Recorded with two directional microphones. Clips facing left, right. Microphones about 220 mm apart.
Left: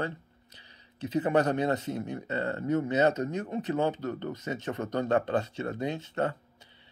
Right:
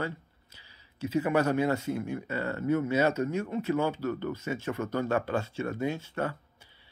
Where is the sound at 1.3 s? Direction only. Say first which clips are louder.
Left 1 dB; 20° left (ahead or behind).